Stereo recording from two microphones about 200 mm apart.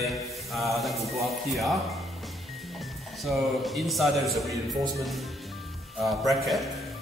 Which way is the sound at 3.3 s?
Centre (ahead or behind).